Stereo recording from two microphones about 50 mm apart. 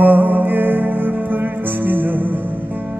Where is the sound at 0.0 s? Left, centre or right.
Right.